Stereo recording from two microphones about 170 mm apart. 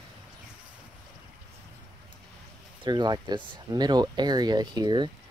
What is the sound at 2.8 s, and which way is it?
Speech, 25° right (ahead or behind).